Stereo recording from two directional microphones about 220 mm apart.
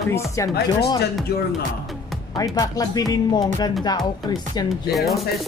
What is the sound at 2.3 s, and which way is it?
Speech, 15° left (ahead or behind).